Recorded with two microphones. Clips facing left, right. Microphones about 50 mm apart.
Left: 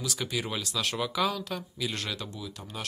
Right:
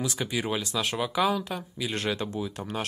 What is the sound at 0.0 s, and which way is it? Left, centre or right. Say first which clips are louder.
Speech: right 3 dB; right.